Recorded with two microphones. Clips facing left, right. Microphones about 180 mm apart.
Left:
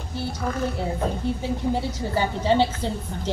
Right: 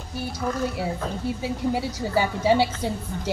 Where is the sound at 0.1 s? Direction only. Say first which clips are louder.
Even; 10° right (ahead or behind).